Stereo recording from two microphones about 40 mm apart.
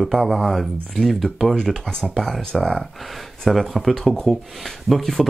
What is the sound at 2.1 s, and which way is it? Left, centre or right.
Speech, centre.